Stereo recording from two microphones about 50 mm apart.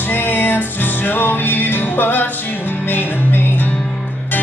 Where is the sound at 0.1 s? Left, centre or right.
Left.